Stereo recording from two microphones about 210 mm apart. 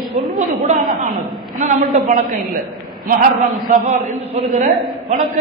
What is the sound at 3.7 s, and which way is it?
A man's voice, 30° right (ahead or behind).